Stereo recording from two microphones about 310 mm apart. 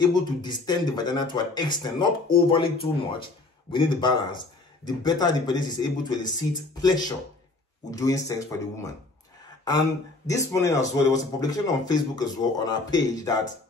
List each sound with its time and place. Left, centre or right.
0.0 s speech: centre